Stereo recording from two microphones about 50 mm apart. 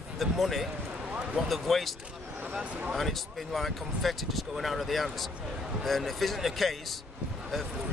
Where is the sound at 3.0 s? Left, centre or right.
Centre.